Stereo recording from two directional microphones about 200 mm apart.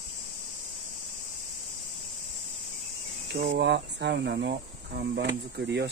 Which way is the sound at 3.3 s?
55° right (ahead or behind).